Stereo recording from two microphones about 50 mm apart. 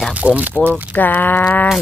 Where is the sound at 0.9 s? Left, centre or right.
Left.